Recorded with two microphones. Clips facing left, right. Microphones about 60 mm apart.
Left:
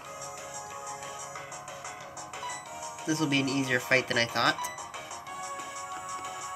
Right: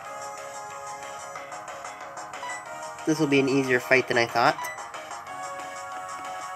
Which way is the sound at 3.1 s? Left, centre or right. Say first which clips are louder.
Right 7 dB; right.